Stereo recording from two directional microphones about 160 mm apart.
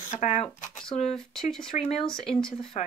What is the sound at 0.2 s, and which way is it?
Speech, 45° left (ahead or behind).